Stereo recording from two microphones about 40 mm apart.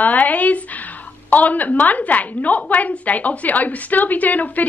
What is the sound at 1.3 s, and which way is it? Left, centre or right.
A woman's voice, left.